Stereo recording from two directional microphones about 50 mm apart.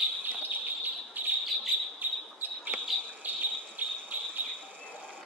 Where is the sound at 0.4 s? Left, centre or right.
Right.